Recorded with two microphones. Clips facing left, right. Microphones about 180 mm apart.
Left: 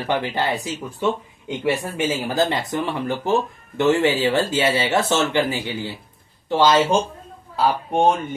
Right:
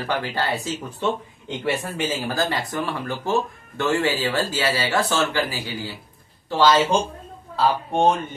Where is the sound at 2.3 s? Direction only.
20° left (ahead or behind).